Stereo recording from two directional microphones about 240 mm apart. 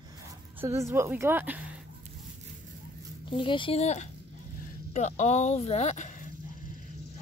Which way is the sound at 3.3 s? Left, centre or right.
Left.